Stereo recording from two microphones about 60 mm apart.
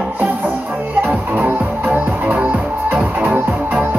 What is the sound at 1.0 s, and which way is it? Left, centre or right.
Music, right.